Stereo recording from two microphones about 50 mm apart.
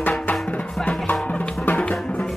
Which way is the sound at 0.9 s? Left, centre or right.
Left.